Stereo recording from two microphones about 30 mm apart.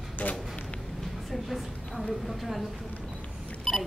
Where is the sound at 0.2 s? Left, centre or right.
Left.